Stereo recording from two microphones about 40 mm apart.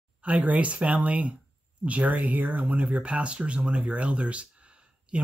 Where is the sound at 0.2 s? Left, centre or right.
Right.